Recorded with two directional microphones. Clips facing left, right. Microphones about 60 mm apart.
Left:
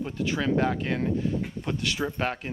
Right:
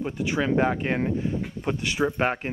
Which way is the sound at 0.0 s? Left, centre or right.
Centre.